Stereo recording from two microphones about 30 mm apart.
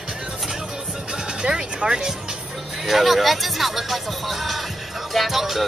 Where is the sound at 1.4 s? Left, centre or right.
Right.